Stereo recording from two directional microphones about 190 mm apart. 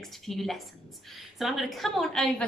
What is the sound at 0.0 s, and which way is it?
A woman's voice, centre (ahead or behind).